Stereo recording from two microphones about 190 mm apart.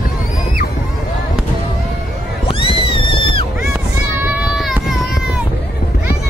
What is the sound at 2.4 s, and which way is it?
Cat, 30° left (ahead or behind).